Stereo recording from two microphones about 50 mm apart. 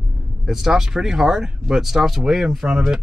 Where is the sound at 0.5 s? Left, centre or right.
Centre.